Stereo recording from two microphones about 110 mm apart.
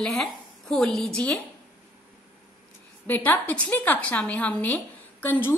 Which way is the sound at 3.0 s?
15° left (ahead or behind).